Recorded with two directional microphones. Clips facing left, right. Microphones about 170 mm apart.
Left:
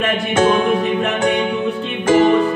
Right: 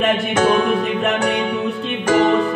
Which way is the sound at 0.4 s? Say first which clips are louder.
Left 2 dB; 25° left (ahead or behind).